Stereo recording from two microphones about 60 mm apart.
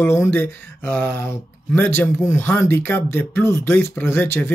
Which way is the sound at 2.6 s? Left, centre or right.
Left.